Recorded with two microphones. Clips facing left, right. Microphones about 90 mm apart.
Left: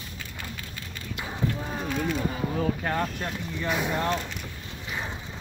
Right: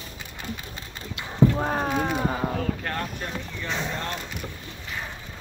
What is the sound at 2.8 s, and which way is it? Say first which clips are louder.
Speech: left 3 dB; 10° left (ahead or behind).